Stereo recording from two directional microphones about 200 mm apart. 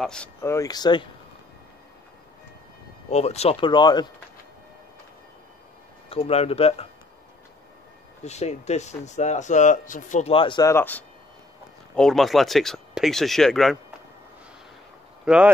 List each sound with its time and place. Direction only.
0.0 s speech: 5° left (ahead or behind); by 1.0 s 20° left (ahead or behind)
3.1 s speech: 30° left (ahead or behind)
6.0 s speech: 30° left (ahead or behind)
8.2 s speech: 35° left (ahead or behind); by 13.7 s centre (ahead or behind)
15.2 s speech: 5° right (ahead or behind)